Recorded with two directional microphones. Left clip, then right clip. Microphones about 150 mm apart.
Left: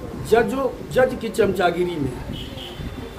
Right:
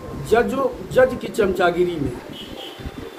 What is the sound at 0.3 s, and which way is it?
Speech, 10° left (ahead or behind).